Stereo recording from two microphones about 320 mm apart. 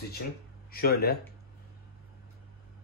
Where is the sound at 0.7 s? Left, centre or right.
Left.